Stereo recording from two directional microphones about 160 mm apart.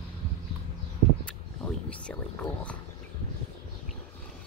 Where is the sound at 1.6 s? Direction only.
10° left (ahead or behind).